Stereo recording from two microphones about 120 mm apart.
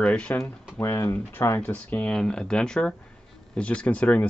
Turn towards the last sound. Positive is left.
turn(degrees=10)  # may be behind; listen again after turning